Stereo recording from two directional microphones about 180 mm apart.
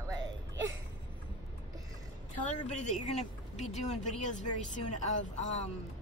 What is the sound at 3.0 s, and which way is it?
A woman's voice, 40° left (ahead or behind).